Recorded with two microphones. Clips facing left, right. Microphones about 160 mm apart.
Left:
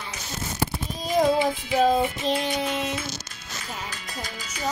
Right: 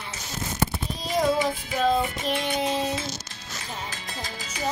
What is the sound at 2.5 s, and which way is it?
Child singing, 30° right (ahead or behind).